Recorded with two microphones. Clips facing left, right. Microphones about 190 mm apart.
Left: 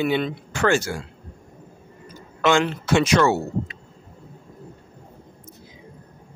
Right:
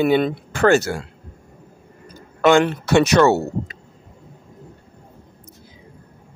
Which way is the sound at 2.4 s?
60° right (ahead or behind).